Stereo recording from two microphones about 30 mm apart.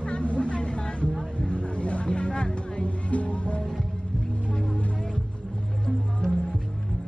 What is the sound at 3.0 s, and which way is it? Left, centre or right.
Music, left.